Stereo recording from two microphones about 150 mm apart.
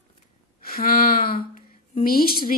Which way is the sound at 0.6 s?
80° left.